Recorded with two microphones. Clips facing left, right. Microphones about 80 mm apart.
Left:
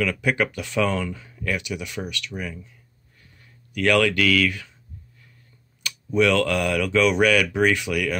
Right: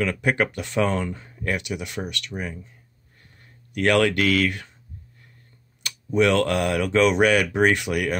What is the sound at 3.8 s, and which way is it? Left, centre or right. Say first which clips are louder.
Speech: even; right.